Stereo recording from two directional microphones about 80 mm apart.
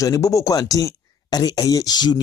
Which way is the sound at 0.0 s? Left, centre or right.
Left.